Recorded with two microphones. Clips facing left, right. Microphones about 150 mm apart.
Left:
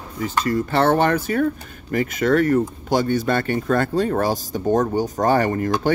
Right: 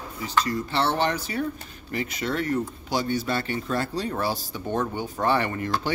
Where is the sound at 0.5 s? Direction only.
50° left (ahead or behind).